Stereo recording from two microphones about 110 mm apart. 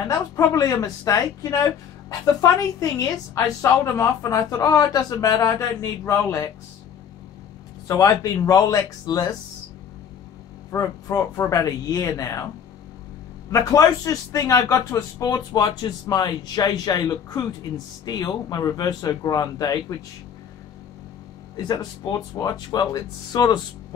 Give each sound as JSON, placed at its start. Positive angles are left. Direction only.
{"t": 0.1, "sound": "speech", "side_deg": 30}
{"t": 7.9, "sound": "speech", "side_deg": 30}
{"t": 10.7, "sound": "speech", "side_deg": 25}
{"t": 13.5, "sound": "speech", "side_deg": 30}
{"t": 21.5, "sound": "speech", "side_deg": 40}